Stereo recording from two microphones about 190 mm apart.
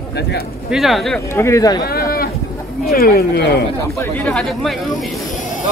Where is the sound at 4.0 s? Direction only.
5° left (ahead or behind).